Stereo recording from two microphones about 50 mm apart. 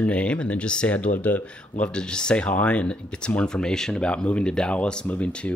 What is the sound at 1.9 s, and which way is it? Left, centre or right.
Speech, centre.